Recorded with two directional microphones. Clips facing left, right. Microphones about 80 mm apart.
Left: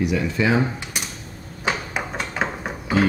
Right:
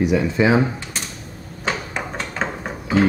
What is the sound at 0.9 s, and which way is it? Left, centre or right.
Mechanisms, centre.